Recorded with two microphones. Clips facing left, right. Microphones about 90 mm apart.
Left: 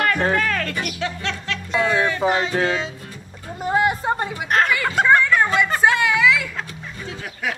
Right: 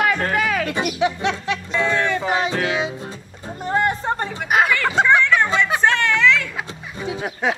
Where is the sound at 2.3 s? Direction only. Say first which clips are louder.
Even; 15° right (ahead or behind).